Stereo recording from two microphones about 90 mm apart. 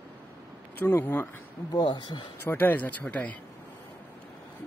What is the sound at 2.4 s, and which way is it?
Speech, 20° left (ahead or behind).